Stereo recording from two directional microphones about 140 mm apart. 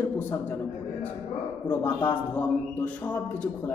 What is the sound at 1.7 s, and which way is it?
A man's voice, 10° left (ahead or behind).